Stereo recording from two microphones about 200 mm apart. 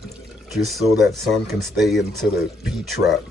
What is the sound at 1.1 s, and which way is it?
Speech, centre (ahead or behind).